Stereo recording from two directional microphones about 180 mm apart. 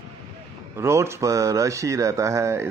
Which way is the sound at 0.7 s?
15° right (ahead or behind).